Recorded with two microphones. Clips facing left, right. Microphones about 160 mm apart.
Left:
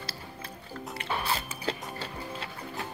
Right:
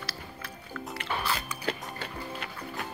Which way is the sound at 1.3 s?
30° left (ahead or behind).